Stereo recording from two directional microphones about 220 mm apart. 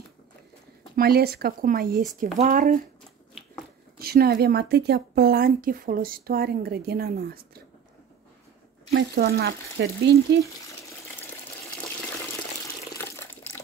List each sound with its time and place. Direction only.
0.9 s speech: 45° right (ahead or behind)
4.0 s speech: 45° right (ahead or behind)
8.9 s speech: 50° right (ahead or behind)
12.9 s water: 10° left (ahead or behind)